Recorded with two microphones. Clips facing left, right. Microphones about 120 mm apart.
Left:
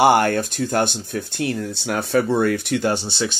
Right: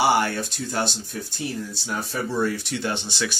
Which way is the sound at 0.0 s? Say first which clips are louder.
Left 5 dB; 55° left (ahead or behind).